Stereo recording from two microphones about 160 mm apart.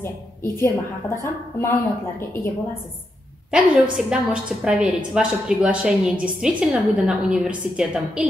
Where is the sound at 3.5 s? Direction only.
5° right (ahead or behind).